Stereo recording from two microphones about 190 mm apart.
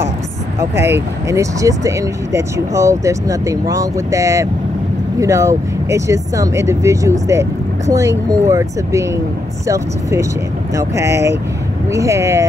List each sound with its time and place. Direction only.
0.6 s speech: 15° right (ahead or behind)
10.7 s speech: 15° right (ahead or behind)